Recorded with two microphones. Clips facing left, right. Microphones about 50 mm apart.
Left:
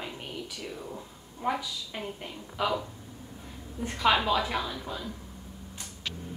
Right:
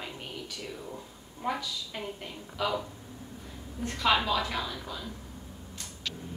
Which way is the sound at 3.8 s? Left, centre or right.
Centre.